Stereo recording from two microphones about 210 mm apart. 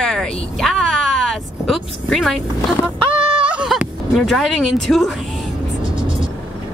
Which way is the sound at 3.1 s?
25° right (ahead or behind).